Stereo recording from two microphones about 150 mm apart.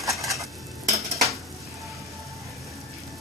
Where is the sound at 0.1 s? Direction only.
Centre (ahead or behind).